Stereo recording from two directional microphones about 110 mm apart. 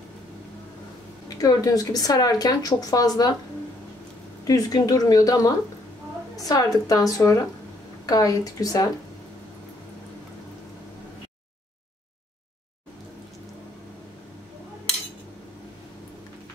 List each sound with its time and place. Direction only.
1.3 s speech: 35° left (ahead or behind)
4.5 s speech: 35° left (ahead or behind)